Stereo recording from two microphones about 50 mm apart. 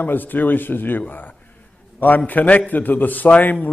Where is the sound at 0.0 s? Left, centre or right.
Left.